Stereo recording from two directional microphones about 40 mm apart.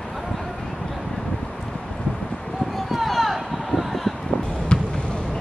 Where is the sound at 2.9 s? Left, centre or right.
Centre.